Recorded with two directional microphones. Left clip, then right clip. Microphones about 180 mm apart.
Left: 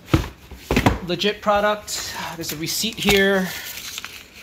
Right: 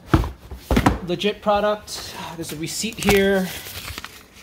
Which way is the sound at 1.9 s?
15° right (ahead or behind).